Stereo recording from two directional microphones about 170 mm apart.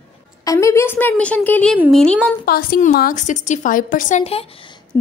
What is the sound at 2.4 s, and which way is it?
A woman's voice, 60° left (ahead or behind).